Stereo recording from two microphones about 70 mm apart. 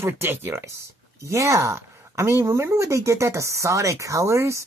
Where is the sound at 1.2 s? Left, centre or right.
Right.